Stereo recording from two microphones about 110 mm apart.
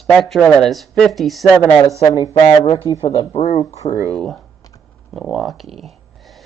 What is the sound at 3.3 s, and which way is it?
Speech, 75° left (ahead or behind).